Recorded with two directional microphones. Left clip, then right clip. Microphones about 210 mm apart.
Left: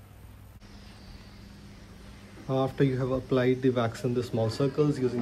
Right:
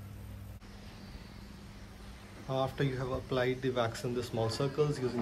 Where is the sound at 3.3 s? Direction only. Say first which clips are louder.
Left 6 dB; 10° right (ahead or behind).